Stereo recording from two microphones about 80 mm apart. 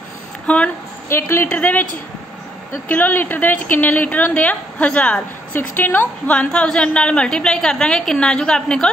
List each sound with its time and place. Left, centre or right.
0.5 s a woman's voice: centre
1.0 s a woman's voice: left
1.5 s a woman's voice: left
2.9 s a woman's voice: left; by 8.8 s centre